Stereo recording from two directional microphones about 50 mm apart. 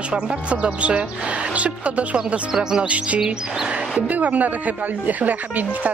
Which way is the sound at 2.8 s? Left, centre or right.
Right.